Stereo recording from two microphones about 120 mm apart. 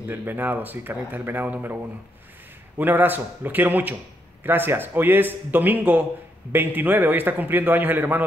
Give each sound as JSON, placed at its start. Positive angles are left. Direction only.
{"t": 0.1, "sound": "a man's voice", "side_deg": -15}
{"t": 2.8, "sound": "a man's voice", "side_deg": -15}